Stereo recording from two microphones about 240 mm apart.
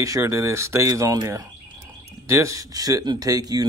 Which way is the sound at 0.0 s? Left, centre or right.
Centre.